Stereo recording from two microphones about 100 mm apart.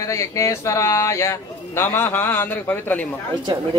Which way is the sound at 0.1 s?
30° left (ahead or behind).